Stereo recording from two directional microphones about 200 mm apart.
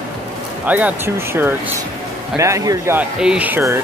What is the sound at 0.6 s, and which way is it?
Speech, 10° right (ahead or behind).